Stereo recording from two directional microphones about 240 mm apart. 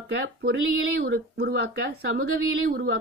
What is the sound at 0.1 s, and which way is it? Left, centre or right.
Speech, right.